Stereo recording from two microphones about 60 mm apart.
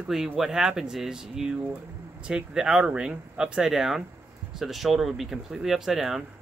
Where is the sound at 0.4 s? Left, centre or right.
Centre.